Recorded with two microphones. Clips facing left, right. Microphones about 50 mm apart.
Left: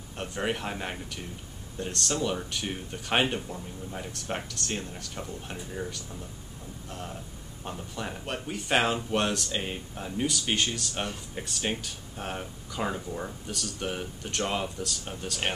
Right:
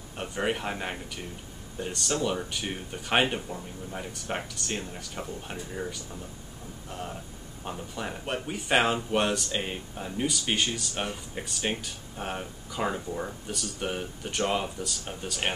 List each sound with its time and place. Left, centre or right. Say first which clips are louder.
0.2 s speech: right 1 dB; centre